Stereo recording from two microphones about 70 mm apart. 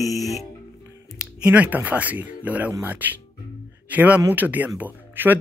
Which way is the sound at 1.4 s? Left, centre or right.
Right.